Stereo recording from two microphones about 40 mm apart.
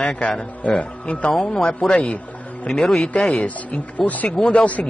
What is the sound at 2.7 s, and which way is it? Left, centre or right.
Speech, centre.